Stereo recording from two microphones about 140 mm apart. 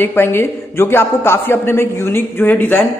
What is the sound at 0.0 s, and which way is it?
A man's voice, 15° left (ahead or behind).